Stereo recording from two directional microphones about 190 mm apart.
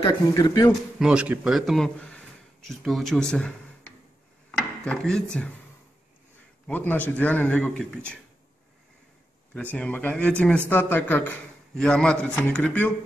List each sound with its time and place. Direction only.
0.0 s a man's voice: 20° left (ahead or behind)
0.9 s speech: 5° right (ahead or behind)
4.5 s dishes: 5° left (ahead or behind)
6.7 s a man's voice: 10° left (ahead or behind)
9.5 s a man's voice: 5° left (ahead or behind)